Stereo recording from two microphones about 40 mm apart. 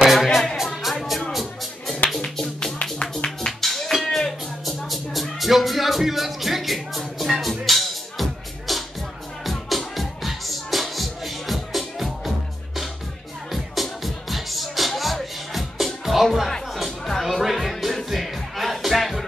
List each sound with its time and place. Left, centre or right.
0.0 s music: centre
2.4 s music: left
3.6 s music: centre
13.5 s music: centre